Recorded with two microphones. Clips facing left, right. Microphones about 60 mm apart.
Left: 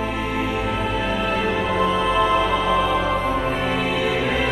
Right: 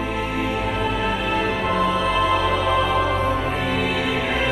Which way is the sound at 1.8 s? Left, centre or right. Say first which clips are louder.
Left 1 dB; left.